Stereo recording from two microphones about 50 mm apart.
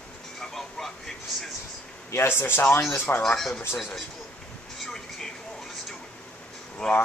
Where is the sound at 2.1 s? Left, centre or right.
Left.